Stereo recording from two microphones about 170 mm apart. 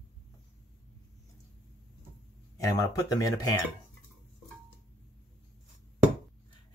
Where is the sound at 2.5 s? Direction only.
20° left (ahead or behind).